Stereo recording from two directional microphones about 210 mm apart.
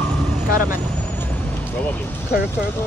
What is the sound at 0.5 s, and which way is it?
Vehicle, 40° left (ahead or behind).